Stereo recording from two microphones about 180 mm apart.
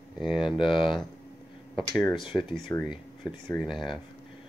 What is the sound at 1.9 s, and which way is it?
Speech, 25° left (ahead or behind).